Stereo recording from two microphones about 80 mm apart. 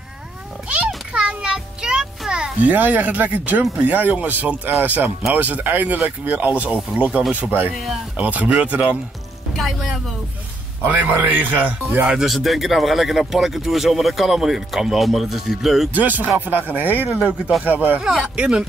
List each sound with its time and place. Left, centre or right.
0.7 s a sound: centre
2.7 s speech: right
7.7 s speech: centre
8.2 s speech: centre
9.6 s speech: centre
10.8 s speech: right
12.1 s speech: centre
15.9 s speech: right
17.2 s speech: centre
17.6 s speech: right
18.0 s speech: centre
18.3 s speech: centre